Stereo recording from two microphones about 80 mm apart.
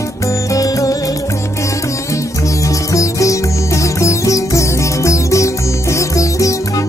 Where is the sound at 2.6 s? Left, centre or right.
Left.